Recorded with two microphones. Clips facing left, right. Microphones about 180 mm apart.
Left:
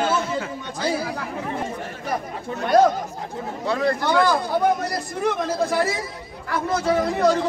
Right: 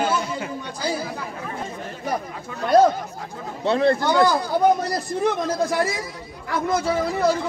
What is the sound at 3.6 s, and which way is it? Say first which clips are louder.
Speech: right 3 dB; 25° right (ahead or behind).